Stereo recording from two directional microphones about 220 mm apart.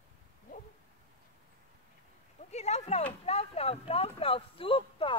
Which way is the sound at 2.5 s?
30° left (ahead or behind).